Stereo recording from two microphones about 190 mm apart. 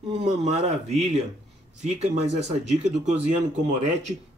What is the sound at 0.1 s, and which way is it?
Speech, 35° right (ahead or behind).